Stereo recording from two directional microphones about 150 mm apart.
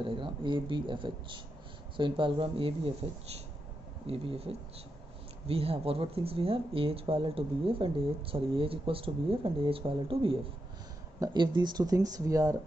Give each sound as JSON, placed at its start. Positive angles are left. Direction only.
{"t": 0.0, "sound": "speech", "side_deg": -35}
{"t": 4.1, "sound": "speech", "side_deg": -40}